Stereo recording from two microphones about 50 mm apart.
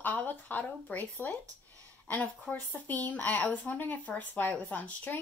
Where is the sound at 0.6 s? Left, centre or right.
Left.